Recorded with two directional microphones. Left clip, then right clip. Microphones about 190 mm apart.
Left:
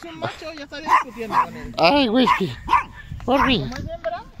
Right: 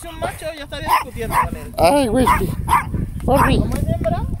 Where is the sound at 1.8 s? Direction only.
10° right (ahead or behind).